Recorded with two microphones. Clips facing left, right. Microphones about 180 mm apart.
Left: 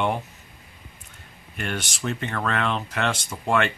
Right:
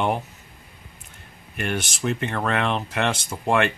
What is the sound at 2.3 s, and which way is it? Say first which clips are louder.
Speech: even; 15° right (ahead or behind).